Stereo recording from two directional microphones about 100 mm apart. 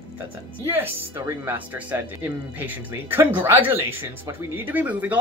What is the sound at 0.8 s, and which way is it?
Speech, 25° right (ahead or behind).